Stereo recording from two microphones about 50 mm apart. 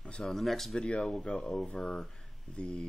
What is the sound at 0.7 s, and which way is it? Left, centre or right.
Speech, centre.